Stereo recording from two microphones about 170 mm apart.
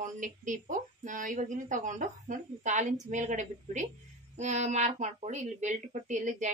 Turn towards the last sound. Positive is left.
turn(degrees=-45)  # may be behind; listen again after turning